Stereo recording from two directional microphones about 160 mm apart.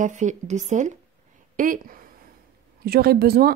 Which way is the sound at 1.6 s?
60° right (ahead or behind).